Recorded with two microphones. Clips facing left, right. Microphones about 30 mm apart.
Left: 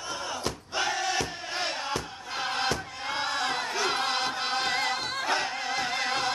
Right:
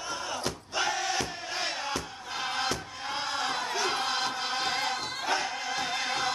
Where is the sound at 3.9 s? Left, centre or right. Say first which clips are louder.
Left 2 dB; centre.